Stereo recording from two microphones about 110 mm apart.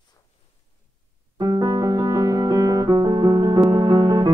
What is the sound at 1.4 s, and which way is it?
Music, 35° right (ahead or behind).